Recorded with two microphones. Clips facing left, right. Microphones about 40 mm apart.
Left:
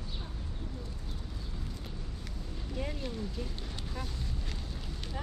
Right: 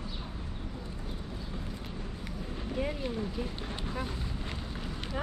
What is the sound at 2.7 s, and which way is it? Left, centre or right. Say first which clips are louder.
Speech: right 4 dB; centre.